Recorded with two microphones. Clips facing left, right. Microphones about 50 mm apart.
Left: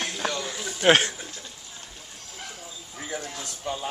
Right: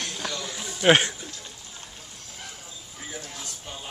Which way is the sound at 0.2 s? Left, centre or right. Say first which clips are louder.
Left 5 dB; left.